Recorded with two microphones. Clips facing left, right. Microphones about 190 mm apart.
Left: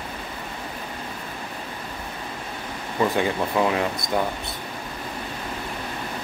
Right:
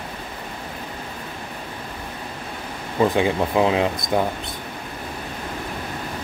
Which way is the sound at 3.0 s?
15° right (ahead or behind).